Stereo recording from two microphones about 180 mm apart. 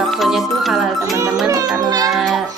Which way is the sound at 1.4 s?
15° right (ahead or behind).